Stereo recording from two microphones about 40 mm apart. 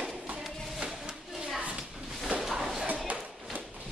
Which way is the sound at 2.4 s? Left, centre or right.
Centre.